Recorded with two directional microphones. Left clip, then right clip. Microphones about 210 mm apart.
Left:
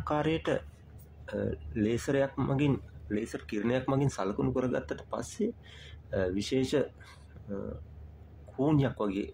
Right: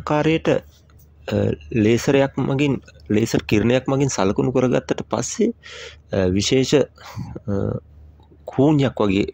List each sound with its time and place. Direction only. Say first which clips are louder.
0.0 s speech: right 11 dB; 30° right (ahead or behind)
8.5 s speech: right 12 dB; 35° right (ahead or behind)